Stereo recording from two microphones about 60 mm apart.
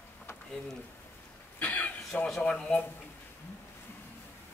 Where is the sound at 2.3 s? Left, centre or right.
Centre.